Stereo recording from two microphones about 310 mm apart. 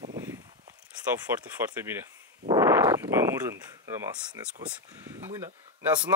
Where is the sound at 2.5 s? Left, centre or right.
Centre.